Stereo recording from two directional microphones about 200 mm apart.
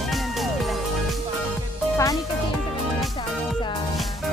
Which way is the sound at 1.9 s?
15° left (ahead or behind).